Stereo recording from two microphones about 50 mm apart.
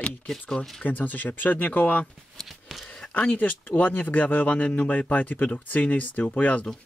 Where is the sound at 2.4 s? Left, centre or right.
Centre.